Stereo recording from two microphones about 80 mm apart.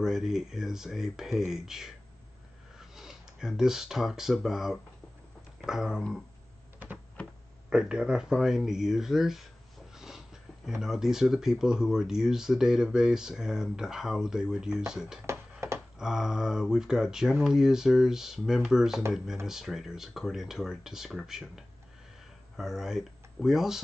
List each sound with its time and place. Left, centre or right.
0.0 s speech: centre
7.7 s speech: centre
9.9 s a sound: centre
10.8 s speech: centre
15.2 s music: right
16.0 s speech: centre